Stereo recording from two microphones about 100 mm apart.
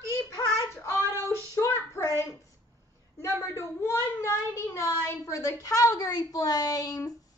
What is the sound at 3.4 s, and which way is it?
Speech, 25° left (ahead or behind).